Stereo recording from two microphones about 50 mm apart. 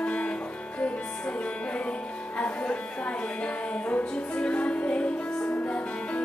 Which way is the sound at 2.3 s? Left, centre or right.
Left.